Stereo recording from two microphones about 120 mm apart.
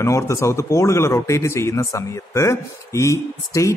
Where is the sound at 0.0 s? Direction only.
25° left (ahead or behind).